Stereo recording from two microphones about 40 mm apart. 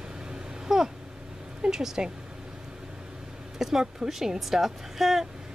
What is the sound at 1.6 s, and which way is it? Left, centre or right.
Speech, centre.